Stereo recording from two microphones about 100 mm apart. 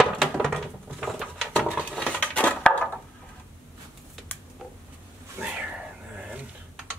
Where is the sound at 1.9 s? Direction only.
15° left (ahead or behind).